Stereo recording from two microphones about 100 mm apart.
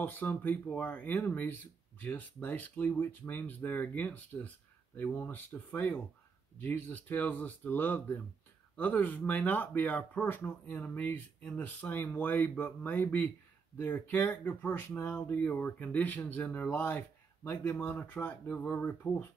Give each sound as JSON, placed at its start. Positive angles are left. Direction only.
{"t": 0.0, "sound": "speech", "side_deg": 20}